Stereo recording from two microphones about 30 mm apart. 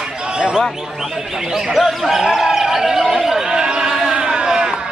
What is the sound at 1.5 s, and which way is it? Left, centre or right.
Speech, centre.